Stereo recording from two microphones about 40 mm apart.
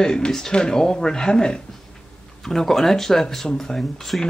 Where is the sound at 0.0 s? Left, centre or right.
Centre.